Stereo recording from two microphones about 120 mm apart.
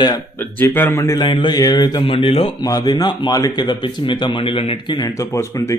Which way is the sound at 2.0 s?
50° left (ahead or behind).